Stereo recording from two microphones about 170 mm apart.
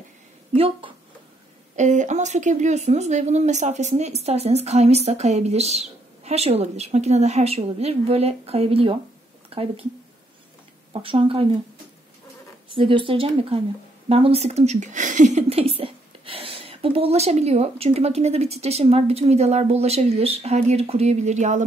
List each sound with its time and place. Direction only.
0.6 s speech: 30° right (ahead or behind)
1.8 s speech: 45° right (ahead or behind)
10.9 s speech: 30° right (ahead or behind)
12.7 s speech: 30° right (ahead or behind)